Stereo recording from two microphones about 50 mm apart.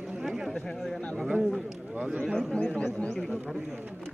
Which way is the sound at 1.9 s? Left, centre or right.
Centre.